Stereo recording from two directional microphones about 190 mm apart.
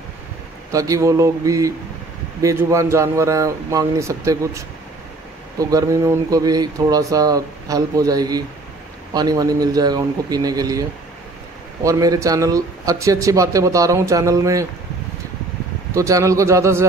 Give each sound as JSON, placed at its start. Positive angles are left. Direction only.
{"t": 0.7, "sound": "speech", "side_deg": -15}
{"t": 15.9, "sound": "speech", "side_deg": -15}